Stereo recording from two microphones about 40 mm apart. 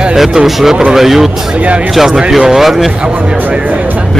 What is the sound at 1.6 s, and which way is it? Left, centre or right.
Speech, right.